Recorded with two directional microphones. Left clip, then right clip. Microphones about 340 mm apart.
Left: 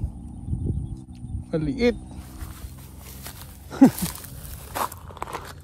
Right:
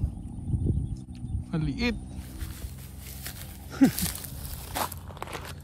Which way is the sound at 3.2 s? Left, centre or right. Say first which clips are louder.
Even; centre.